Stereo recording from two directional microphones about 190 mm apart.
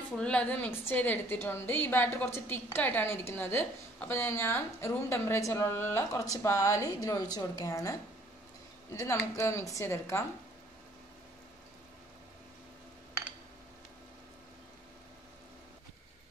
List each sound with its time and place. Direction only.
0.2 s a woman's voice: 5° left (ahead or behind)